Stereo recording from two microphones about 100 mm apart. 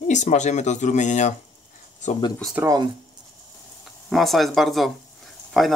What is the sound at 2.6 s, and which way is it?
Speech, 20° right (ahead or behind).